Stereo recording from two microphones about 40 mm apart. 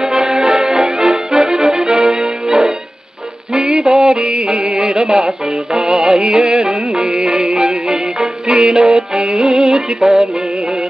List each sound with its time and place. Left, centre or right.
0.0 s accordion: centre
2.4 s music: centre
5.9 s music: right
7.1 s music: right; by 10.8 s centre